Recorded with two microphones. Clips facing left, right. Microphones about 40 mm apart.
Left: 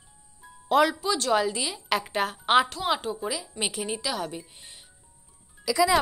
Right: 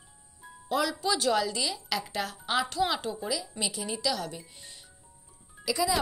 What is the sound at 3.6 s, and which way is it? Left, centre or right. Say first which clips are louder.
Speech: left 3 dB; left.